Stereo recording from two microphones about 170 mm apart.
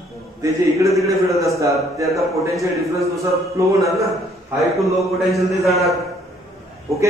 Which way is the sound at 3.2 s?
20° right (ahead or behind).